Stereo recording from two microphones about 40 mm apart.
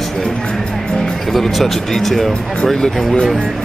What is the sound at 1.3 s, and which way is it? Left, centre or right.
Speech, centre.